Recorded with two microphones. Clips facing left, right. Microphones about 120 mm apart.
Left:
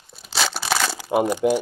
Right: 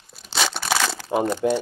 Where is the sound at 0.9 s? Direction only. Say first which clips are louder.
Left 2 dB; 10° left (ahead or behind).